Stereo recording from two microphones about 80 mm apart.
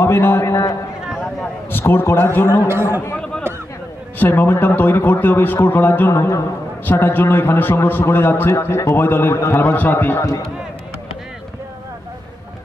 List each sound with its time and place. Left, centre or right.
0.0 s a man's voice: left
1.7 s speech: left
2.7 s speech: right
4.2 s speech: left
6.1 s music: left
6.9 s speech: left
9.6 s speech: left